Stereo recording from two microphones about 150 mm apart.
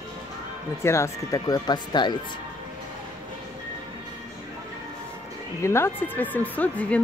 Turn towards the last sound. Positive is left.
turn(degrees=10)  # may be behind; listen again after turning